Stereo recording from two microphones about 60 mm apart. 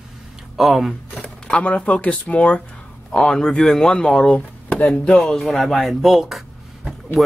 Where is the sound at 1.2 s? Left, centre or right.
Left.